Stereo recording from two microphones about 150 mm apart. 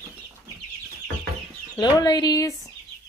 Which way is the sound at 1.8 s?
30° left (ahead or behind).